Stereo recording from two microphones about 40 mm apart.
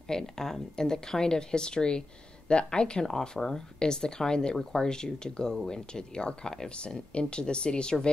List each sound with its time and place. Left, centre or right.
0.1 s speech: centre
3.1 s speech: centre